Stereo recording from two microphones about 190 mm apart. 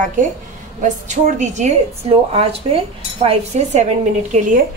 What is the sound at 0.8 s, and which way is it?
A woman's voice, 40° right (ahead or behind).